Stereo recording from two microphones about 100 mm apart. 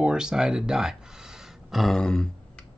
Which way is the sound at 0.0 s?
5° right (ahead or behind).